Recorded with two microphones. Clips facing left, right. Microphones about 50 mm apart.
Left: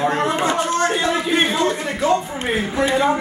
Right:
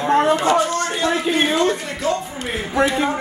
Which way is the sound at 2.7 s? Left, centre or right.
Right.